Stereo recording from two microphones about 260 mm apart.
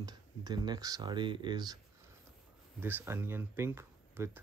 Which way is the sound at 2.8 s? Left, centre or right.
Centre.